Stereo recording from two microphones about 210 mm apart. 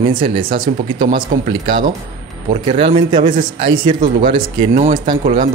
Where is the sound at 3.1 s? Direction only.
40° right (ahead or behind).